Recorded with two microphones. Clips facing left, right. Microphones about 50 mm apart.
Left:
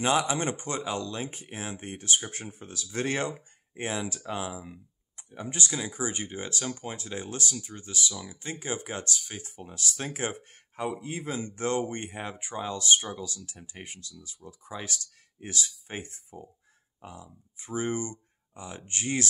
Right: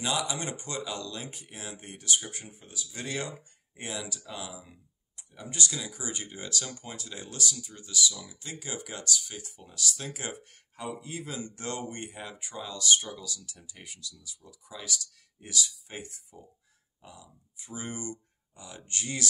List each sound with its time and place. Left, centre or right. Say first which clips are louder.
0.0 s speech: left 6 dB; left
2.3 s speech: left 4 dB; left